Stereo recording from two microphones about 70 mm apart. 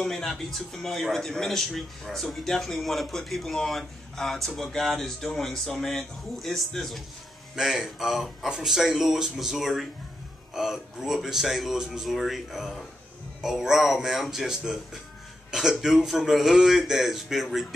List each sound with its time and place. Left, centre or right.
0.0 s speech: centre
7.5 s speech: centre
15.8 s speech: centre